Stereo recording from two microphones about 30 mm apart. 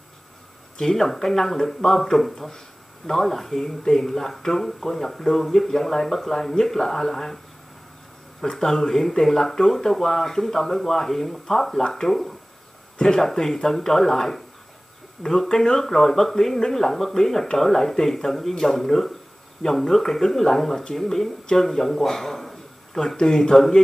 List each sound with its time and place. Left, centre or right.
0.7 s speech: centre
8.4 s a man's voice: centre
23.1 s speech: left